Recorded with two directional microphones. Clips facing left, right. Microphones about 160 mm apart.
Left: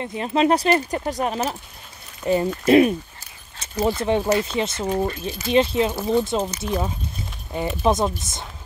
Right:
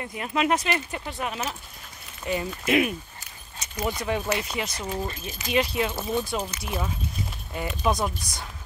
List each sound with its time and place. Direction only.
0.0 s speech: 25° left (ahead or behind)
3.6 s a sound: 30° left (ahead or behind)
4.0 s speech: 30° left (ahead or behind)
7.8 s speech: 25° left (ahead or behind)